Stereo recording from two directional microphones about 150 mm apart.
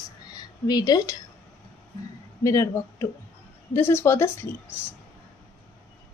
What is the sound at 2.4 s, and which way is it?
Speech, 20° left (ahead or behind).